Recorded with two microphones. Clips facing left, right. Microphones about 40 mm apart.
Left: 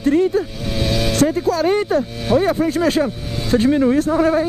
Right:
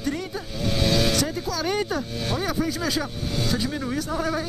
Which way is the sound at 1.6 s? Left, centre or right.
Left.